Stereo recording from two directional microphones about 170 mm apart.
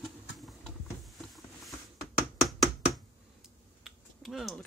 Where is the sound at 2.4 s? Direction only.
Centre (ahead or behind).